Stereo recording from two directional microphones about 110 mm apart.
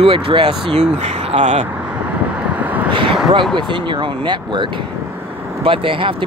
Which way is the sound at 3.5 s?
45° right (ahead or behind).